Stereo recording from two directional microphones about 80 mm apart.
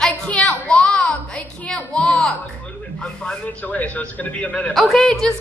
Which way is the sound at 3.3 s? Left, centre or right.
Centre.